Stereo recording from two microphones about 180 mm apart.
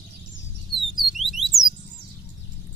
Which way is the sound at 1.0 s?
Centre (ahead or behind).